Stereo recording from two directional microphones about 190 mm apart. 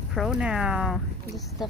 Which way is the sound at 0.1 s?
Centre (ahead or behind).